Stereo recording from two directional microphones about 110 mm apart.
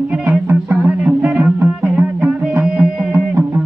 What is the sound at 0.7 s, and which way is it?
Music, 10° right (ahead or behind).